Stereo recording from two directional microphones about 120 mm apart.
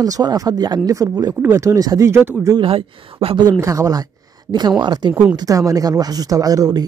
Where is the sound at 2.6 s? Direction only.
50° right (ahead or behind).